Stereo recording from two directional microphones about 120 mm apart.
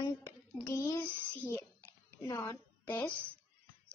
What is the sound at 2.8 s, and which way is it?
Speech, 15° left (ahead or behind).